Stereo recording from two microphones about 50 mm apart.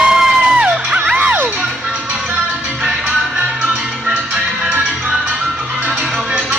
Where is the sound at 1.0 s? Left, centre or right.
Right.